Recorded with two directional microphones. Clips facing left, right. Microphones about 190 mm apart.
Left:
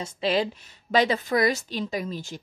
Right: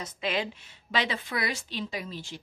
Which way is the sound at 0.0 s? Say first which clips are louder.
Left 6 dB; 30° left (ahead or behind).